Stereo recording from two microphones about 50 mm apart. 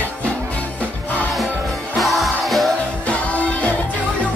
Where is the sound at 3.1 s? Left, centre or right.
Left.